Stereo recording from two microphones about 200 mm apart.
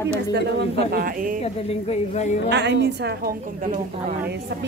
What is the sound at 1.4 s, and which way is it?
Speech, 30° left (ahead or behind).